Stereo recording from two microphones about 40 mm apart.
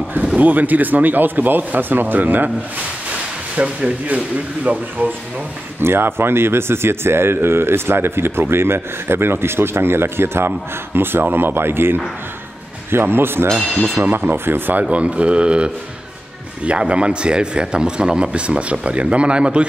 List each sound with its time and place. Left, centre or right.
0.4 s speech: right
3.5 s speech: right
4.6 s speech: right
5.8 s speech: right
11.0 s speech: right
14.9 s a man's voice: right